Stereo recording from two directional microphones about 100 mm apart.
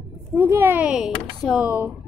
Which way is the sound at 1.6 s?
20° right (ahead or behind).